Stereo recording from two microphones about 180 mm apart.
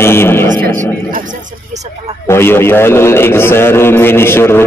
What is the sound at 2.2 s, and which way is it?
A man's voice, 15° left (ahead or behind).